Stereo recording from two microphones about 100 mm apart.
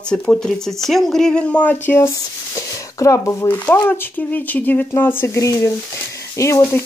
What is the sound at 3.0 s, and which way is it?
Speech, 30° left (ahead or behind).